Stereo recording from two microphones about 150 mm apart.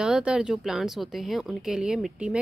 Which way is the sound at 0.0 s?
5° right (ahead or behind).